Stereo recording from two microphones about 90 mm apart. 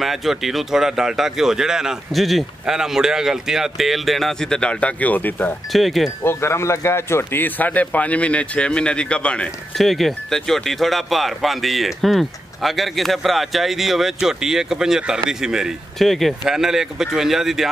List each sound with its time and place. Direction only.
0.0 s speech: centre (ahead or behind); by 5.5 s 15° left (ahead or behind)
5.7 s speech: centre (ahead or behind)
6.2 s a man's voice: 30° left (ahead or behind); by 9.5 s 10° left (ahead or behind)
9.8 s speech: centre (ahead or behind)